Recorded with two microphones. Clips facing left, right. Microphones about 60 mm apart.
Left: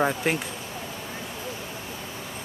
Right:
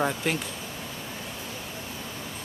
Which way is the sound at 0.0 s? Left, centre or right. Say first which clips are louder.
Left 3 dB; centre.